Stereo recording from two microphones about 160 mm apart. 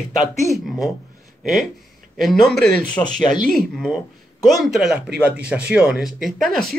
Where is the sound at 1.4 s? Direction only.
Centre (ahead or behind).